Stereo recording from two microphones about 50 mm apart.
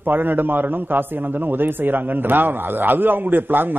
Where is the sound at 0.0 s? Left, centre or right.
Right.